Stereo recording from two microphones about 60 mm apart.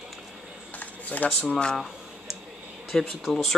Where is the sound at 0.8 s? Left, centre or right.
Left.